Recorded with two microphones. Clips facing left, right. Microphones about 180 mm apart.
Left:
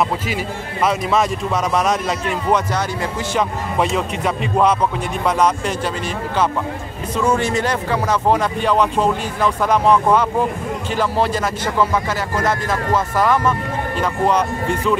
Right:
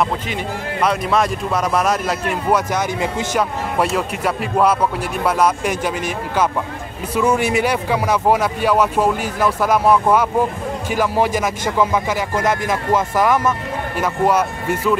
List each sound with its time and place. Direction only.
0.8 s speech: centre (ahead or behind)
2.7 s speech: 20° right (ahead or behind)
3.3 s speech: 5° right (ahead or behind)
7.2 s speech: 10° right (ahead or behind)